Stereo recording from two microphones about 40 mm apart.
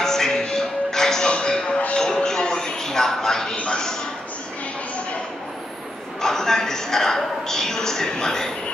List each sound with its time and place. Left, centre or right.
0.0 s music: centre
1.3 s music: left
3.5 s a man's voice: left
6.2 s a woman's voice: centre